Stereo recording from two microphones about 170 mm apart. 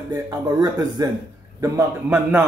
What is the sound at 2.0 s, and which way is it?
Speech, 10° right (ahead or behind).